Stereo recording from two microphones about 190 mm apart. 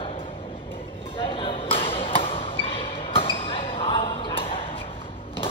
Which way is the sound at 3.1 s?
30° left (ahead or behind).